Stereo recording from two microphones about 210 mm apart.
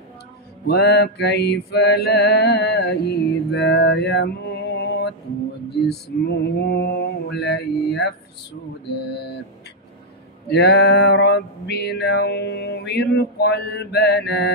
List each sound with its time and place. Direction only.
0.7 s mantra: 50° left (ahead or behind)
10.5 s mantra: 50° left (ahead or behind)